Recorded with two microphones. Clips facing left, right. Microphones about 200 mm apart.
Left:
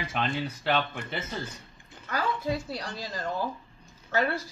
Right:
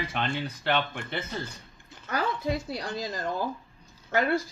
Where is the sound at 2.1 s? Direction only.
20° right (ahead or behind).